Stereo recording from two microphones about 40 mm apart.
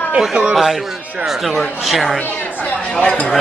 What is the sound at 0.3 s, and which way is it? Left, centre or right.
Speech, right.